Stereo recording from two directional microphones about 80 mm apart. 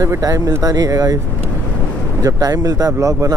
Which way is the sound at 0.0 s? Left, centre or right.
Right.